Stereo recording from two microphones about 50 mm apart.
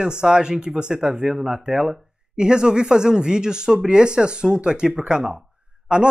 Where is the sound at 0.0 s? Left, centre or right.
Centre.